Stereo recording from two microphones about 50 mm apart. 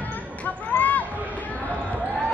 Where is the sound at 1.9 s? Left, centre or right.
Right.